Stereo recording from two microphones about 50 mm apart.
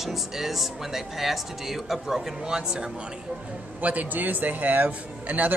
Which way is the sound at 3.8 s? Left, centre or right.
Right.